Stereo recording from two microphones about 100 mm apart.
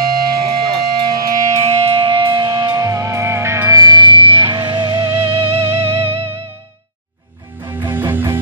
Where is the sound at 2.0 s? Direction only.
50° right (ahead or behind).